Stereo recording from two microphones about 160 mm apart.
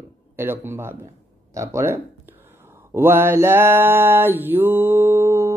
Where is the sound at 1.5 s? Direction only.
20° right (ahead or behind).